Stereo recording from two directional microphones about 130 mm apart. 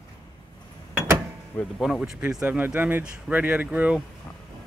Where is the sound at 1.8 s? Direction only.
5° right (ahead or behind).